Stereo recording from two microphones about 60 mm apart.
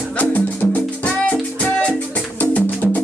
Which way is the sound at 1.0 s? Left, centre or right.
Left.